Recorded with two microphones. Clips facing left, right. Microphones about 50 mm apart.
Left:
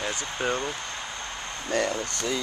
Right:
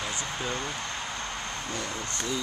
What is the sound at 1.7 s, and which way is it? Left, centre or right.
Speech, left.